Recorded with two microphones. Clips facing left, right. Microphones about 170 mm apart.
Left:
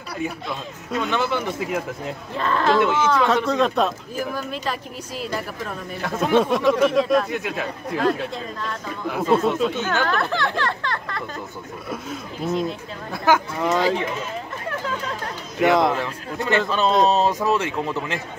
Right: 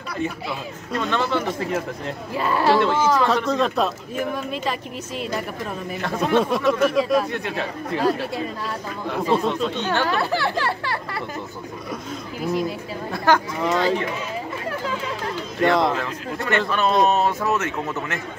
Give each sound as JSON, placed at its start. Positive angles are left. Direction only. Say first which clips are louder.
{"t": 0.2, "sound": "speech", "louder": "right 1 dB", "side_deg": 5}
{"t": 2.3, "sound": "speech", "louder": "right 1 dB", "side_deg": -10}
{"t": 8.0, "sound": "speech", "louder": "even", "side_deg": -10}
{"t": 10.0, "sound": "speech", "louder": "right 1 dB", "side_deg": -5}
{"t": 12.4, "sound": "speech", "louder": "even", "side_deg": -5}
{"t": 15.6, "sound": "speech", "louder": "left 1 dB", "side_deg": 0}
{"t": 16.3, "sound": "speech", "louder": "left 2 dB", "side_deg": 20}